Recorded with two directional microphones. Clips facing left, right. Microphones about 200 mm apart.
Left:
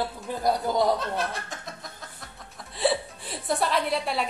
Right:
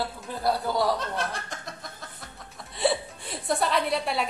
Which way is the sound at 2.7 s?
Centre (ahead or behind).